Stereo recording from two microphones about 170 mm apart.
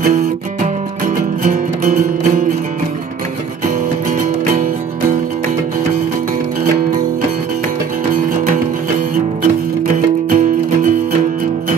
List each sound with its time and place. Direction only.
1.0 s music: 50° right (ahead or behind)
3.6 s music: 50° right (ahead or behind)
10.3 s music: 50° right (ahead or behind)